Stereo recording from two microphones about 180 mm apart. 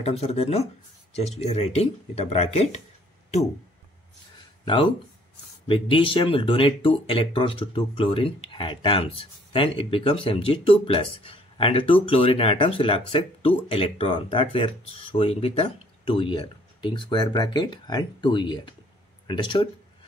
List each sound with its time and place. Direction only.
0.0 s speech: 35° left (ahead or behind)
5.7 s speech: 30° left (ahead or behind)